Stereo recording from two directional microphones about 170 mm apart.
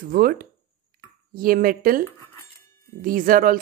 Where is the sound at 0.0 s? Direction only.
55° right (ahead or behind).